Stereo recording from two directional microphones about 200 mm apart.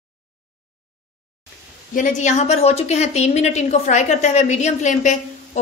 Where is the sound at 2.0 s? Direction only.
40° left (ahead or behind).